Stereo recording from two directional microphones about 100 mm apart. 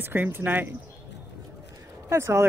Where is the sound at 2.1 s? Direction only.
25° right (ahead or behind).